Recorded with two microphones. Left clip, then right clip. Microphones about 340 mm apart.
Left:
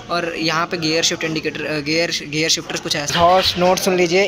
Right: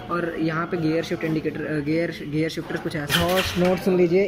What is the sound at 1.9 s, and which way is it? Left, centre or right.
Speech, left.